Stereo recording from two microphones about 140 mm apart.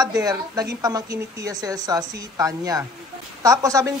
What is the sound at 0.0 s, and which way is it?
Speech, 25° right (ahead or behind).